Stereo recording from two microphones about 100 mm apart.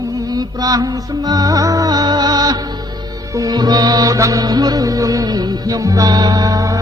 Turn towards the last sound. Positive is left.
turn(degrees=-35)  # may be behind; listen again after turning